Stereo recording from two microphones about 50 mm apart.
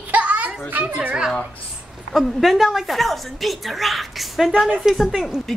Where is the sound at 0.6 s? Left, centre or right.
Right.